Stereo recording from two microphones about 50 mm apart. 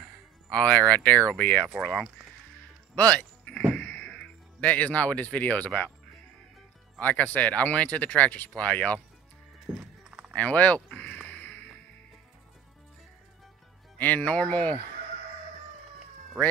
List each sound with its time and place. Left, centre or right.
0.5 s speech: left
1.8 s speech: centre
3.0 s speech: left
3.7 s a sound: left
4.1 s speech: left
7.0 s speech: left
9.7 s clip-clop: centre
10.3 s speech: left
11.2 s music: left
13.9 s speech: left